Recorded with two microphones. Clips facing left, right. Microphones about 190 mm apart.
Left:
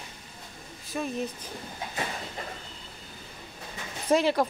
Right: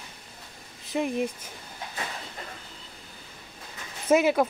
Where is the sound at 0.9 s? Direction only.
15° right (ahead or behind).